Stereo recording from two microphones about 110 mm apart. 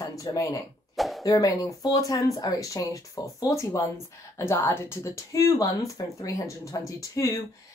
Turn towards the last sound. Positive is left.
turn(degrees=30)  # may be behind; listen again after turning